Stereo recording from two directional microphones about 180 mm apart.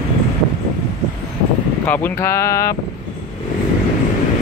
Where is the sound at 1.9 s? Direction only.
10° left (ahead or behind).